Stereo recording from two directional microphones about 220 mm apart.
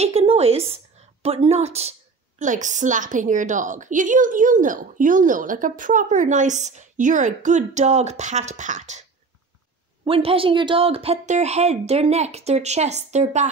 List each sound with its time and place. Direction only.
0.0 s a woman's voice: 25° right (ahead or behind)
10.0 s speech: 25° right (ahead or behind)